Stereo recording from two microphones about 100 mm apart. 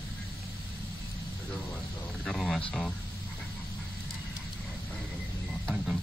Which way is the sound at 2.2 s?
Centre (ahead or behind).